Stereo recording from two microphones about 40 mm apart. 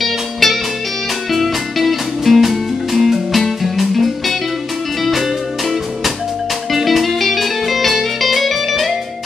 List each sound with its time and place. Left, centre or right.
0.0 s music: centre
6.7 s music: centre